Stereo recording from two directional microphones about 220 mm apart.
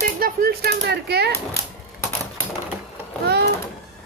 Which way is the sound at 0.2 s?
40° right (ahead or behind).